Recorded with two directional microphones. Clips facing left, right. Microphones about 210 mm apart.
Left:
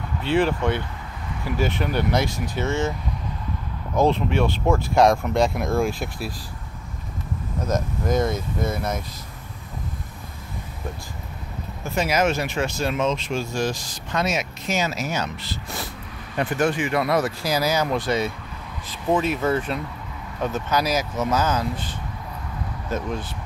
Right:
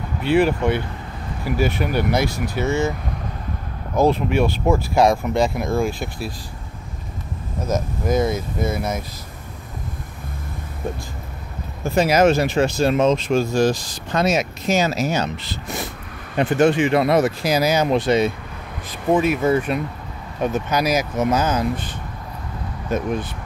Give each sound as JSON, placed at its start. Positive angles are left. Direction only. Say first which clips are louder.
{"t": 0.2, "sound": "speech", "louder": "right 4 dB", "side_deg": -10}
{"t": 3.9, "sound": "speech", "louder": "right 2 dB", "side_deg": -10}
{"t": 7.6, "sound": "speech", "louder": "right 2 dB", "side_deg": -5}
{"t": 11.8, "sound": "speech", "louder": "right 6 dB", "side_deg": -35}
{"t": 18.9, "sound": "speech", "louder": "right 4 dB", "side_deg": -10}